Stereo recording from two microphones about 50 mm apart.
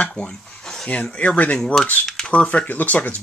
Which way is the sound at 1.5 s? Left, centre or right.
Centre.